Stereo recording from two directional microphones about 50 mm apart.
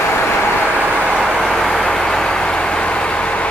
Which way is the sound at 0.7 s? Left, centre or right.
Right.